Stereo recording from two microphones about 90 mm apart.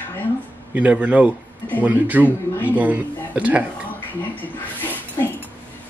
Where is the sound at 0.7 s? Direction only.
15° right (ahead or behind).